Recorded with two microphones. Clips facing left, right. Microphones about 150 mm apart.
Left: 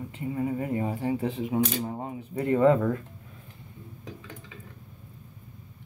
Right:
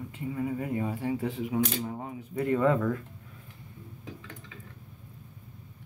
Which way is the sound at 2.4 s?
30° left (ahead or behind).